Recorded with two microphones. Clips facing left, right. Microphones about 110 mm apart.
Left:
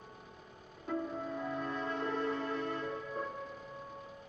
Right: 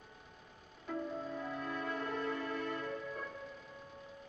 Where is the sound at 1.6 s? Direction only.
30° left (ahead or behind).